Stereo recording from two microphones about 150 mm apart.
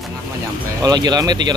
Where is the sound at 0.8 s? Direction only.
25° right (ahead or behind).